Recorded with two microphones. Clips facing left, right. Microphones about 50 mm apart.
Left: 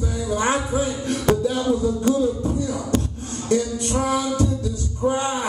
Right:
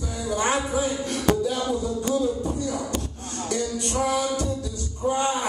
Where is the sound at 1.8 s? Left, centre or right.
Left.